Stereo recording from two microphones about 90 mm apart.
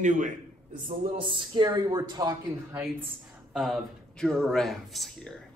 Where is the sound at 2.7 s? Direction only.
30° right (ahead or behind).